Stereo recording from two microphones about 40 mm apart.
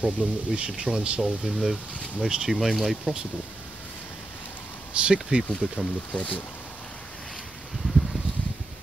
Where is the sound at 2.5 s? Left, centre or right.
Centre.